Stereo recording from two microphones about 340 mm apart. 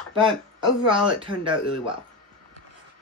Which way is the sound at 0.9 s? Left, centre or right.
Centre.